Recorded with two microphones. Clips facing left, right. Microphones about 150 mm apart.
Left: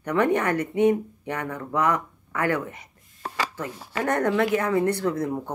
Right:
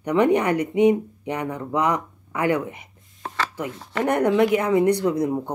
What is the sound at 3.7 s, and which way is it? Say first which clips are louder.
Speech: right 2 dB; 10° left (ahead or behind).